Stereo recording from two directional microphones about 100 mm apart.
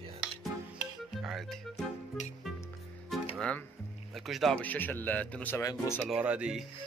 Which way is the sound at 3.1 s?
Centre (ahead or behind).